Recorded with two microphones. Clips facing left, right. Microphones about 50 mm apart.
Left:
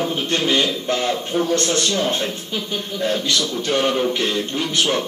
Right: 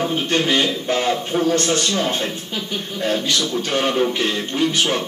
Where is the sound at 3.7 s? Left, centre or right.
Centre.